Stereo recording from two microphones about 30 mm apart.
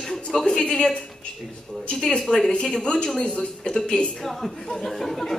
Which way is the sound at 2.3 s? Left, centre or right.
Left.